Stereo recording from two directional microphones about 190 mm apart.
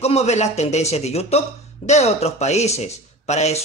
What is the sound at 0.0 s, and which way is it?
Speech, 35° left (ahead or behind).